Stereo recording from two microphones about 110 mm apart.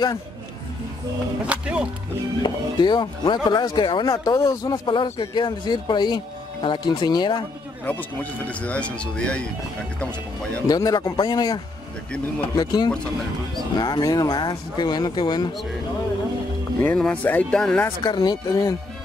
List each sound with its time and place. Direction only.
1.5 s speech: 10° right (ahead or behind)
2.4 s speech: 45° left (ahead or behind)
4.1 s speech: 30° left (ahead or behind)
4.8 s speech: 45° left (ahead or behind)
7.8 s speech: 15° left (ahead or behind)
10.7 s speech: 35° left (ahead or behind)
16.8 s speech: 10° left (ahead or behind)
18.0 s speech: 40° left (ahead or behind)